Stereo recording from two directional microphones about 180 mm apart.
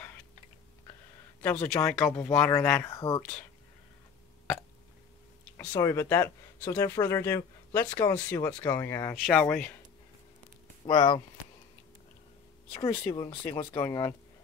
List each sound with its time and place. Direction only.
1.4 s speech: 10° left (ahead or behind)
3.2 s speech: 5° left (ahead or behind)
5.7 s speech: 15° left (ahead or behind)
9.2 s speech: 5° left (ahead or behind)
10.9 s speech: 25° left (ahead or behind)
12.7 s speech: 20° left (ahead or behind)